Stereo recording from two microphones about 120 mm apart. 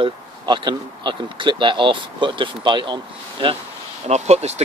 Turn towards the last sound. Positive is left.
turn(degrees=-65)  # may be behind; listen again after turning